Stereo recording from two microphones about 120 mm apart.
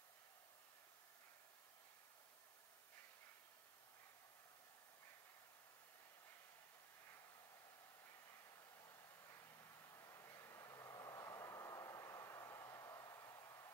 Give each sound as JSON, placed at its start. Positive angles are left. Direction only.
{"t": 8.8, "sound": "vehicle", "side_deg": 20}